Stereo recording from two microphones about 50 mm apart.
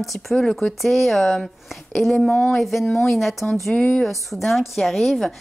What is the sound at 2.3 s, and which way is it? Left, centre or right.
Speech, left.